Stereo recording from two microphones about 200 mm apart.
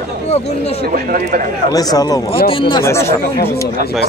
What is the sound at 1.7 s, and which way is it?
Speech, 20° left (ahead or behind).